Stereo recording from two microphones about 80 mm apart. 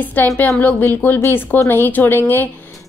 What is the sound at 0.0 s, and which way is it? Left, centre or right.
A woman's voice, left.